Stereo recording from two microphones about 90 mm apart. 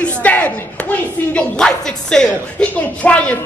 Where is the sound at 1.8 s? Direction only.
5° left (ahead or behind).